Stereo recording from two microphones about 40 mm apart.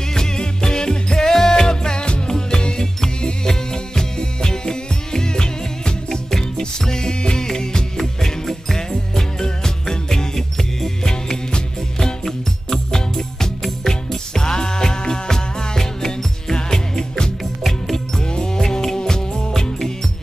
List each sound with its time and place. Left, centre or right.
0.1 s music: centre
17.6 s music: centre
18.3 s music: centre